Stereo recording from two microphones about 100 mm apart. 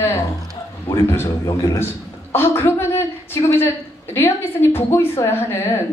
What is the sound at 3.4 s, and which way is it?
Speech, 35° left (ahead or behind).